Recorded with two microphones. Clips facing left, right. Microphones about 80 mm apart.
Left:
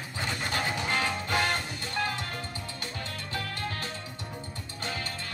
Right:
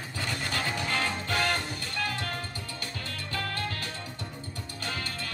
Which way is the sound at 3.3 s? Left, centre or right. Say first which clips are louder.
Right 2 dB; left.